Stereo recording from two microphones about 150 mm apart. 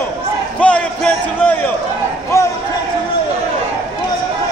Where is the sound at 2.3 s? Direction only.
20° left (ahead or behind).